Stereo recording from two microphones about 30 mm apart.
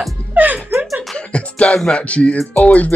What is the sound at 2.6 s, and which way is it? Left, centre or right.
Speech, left.